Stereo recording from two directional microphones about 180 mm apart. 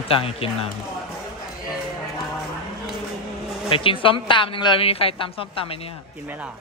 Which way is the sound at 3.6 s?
30° left (ahead or behind).